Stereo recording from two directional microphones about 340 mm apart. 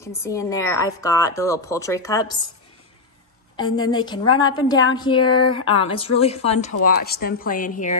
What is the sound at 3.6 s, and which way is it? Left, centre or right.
A woman's voice, centre.